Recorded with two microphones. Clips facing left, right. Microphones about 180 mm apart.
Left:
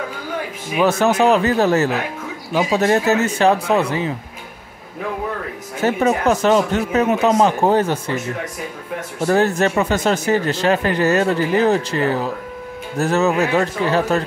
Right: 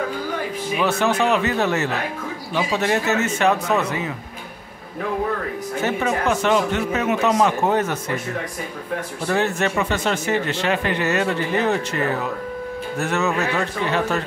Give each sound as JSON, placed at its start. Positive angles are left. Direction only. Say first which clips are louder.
{"t": 0.7, "sound": "speech", "louder": "left 5 dB", "side_deg": 40}
{"t": 5.8, "sound": "speech", "louder": "left 5 dB", "side_deg": 40}
{"t": 9.2, "sound": "speech", "louder": "left 6 dB", "side_deg": 40}